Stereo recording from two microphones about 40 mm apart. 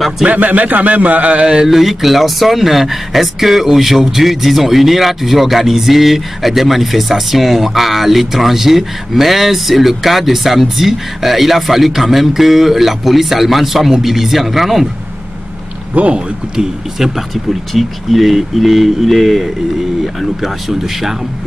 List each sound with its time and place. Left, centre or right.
0.3 s a man's voice: right
1.7 s speech: centre
16.0 s speech: right
16.5 s speech: centre